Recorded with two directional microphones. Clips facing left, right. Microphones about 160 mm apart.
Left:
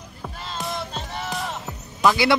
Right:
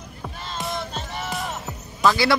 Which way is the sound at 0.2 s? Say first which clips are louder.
Even; centre (ahead or behind).